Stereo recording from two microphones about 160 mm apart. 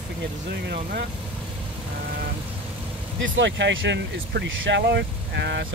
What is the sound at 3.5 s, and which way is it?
Speech, 90° right.